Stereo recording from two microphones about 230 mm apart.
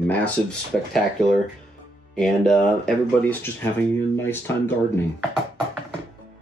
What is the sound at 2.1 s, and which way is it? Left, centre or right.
Speech, centre.